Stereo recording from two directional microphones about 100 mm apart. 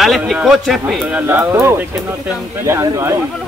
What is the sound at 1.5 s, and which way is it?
Speech, 25° right (ahead or behind).